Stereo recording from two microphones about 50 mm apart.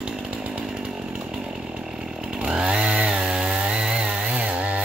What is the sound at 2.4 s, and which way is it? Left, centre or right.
Chainsaw, centre.